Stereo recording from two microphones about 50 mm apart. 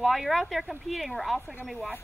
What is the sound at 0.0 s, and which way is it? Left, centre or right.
Speech, centre.